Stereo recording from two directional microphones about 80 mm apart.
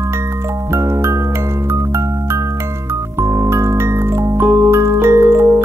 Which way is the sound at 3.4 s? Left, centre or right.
Right.